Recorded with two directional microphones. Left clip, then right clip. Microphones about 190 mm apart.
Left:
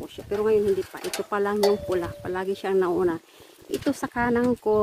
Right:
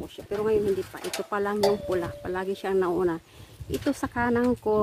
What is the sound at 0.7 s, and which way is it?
Speech, 55° left (ahead or behind).